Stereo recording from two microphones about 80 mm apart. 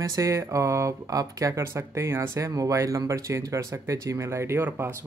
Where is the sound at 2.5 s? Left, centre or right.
Right.